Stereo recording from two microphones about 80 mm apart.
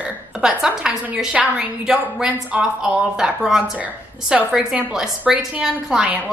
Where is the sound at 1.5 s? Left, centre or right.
Centre.